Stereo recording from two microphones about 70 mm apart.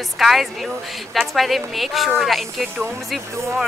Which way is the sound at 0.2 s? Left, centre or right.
Centre.